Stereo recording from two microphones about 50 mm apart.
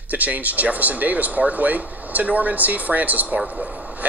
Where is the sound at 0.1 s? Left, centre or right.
Right.